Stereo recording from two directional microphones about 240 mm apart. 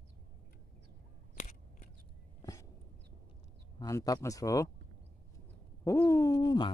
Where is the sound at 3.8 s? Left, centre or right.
Centre.